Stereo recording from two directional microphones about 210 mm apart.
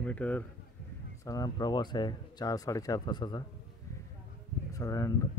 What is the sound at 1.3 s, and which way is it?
Speech, 15° left (ahead or behind).